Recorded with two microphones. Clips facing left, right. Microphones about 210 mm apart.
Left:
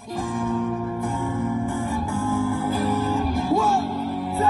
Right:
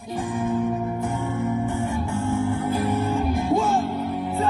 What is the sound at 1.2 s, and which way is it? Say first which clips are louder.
Music: left 1 dB; 45° left (ahead or behind).